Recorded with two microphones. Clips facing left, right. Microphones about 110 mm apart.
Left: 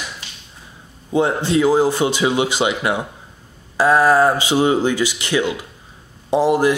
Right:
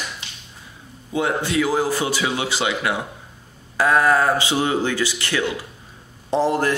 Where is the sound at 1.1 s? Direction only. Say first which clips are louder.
Left 5 dB; 30° left (ahead or behind).